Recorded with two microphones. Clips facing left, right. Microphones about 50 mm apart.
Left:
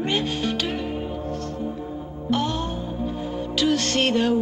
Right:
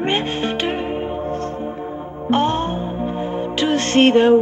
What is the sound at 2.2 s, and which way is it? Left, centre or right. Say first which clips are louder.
Music: right 7 dB; right.